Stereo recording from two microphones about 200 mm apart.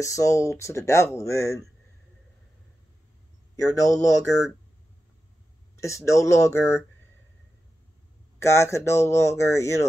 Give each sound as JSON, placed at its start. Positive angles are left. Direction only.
{"t": 0.0, "sound": "speech", "side_deg": 15}
{"t": 3.5, "sound": "speech", "side_deg": 15}
{"t": 5.8, "sound": "speech", "side_deg": 15}
{"t": 8.4, "sound": "speech", "side_deg": 15}